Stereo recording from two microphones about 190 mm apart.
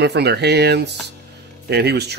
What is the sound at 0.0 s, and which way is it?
Speech, 60° right (ahead or behind).